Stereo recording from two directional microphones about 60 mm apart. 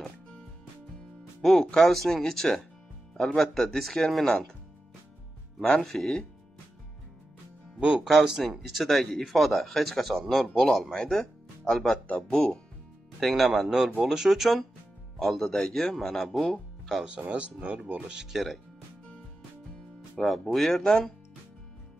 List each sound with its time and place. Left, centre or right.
1.4 s speech: centre
5.6 s speech: centre
8.0 s speech: centre
17.0 s speech: centre
18.1 s speech: centre
20.2 s speech: centre